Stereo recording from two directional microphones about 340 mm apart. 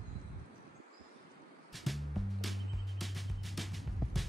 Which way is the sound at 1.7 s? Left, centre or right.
Centre.